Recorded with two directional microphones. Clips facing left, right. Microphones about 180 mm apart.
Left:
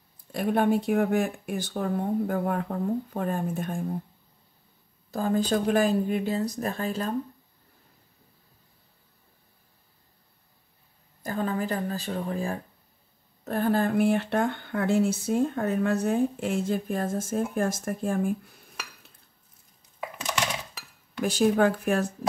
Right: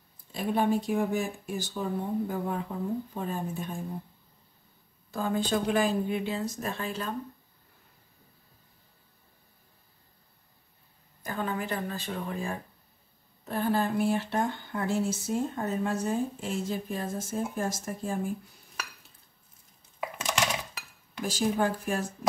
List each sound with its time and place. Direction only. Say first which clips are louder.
0.3 s speech: left 3 dB; 60° left (ahead or behind)
5.1 s speech: left 3 dB; 40° left (ahead or behind)
11.2 s speech: left 4 dB; 35° left (ahead or behind)
13.4 s speech: left 3 dB; 50° left (ahead or behind)
21.3 s speech: left 5 dB; 60° left (ahead or behind)